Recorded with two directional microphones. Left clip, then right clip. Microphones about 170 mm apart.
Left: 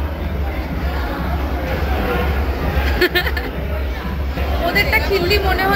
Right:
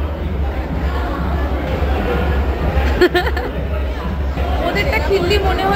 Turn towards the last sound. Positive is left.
turn(degrees=-10)  # may be behind; listen again after turning